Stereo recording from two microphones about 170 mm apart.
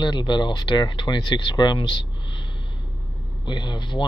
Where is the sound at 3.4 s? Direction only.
25° left (ahead or behind).